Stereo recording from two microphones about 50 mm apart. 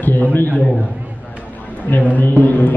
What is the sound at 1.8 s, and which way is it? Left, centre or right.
Speech, left.